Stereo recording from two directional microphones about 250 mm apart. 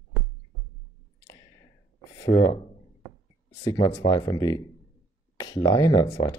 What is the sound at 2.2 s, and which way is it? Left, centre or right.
Speech, centre.